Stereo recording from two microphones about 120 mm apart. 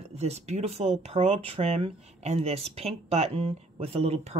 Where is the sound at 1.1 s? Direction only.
55° right (ahead or behind).